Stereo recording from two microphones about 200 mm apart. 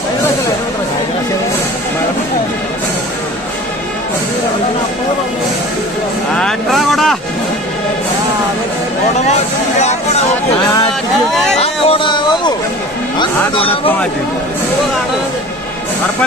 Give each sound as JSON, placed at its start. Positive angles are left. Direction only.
{"t": 6.3, "sound": "speech", "side_deg": 0}
{"t": 11.5, "sound": "speech", "side_deg": 30}